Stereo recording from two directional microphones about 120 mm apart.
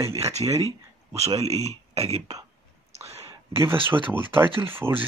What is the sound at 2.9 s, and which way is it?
Whispering, 60° right (ahead or behind).